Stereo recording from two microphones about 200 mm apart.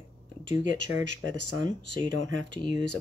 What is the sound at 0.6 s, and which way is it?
Speech, 65° right (ahead or behind).